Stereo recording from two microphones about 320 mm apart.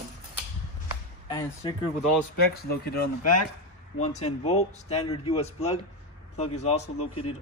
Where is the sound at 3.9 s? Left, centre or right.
Left.